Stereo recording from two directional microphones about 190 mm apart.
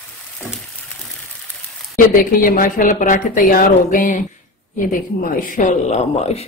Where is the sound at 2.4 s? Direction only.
45° left (ahead or behind).